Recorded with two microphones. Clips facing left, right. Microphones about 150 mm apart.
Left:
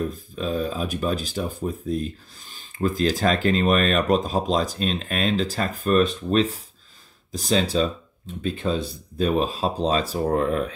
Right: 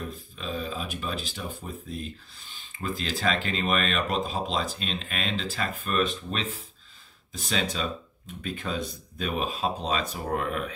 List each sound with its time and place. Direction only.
0.0 s speech: 45° left (ahead or behind)